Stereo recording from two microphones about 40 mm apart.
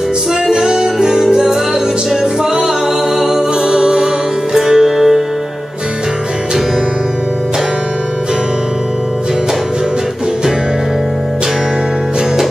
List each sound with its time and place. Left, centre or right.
0.5 s music: centre
3.2 s music: centre